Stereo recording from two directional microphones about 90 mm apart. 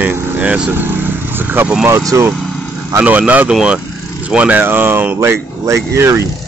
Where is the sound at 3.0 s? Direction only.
15° right (ahead or behind); by 6.2 s 30° right (ahead or behind).